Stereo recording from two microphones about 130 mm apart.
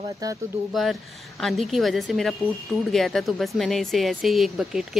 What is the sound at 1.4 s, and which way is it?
Speech, centre (ahead or behind).